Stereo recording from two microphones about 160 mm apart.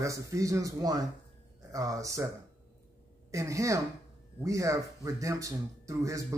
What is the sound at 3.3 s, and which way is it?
A man's voice, 20° right (ahead or behind).